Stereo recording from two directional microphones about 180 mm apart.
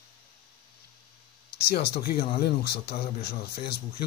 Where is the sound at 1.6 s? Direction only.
60° left (ahead or behind).